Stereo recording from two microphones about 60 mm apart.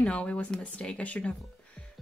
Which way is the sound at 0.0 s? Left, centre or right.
Centre.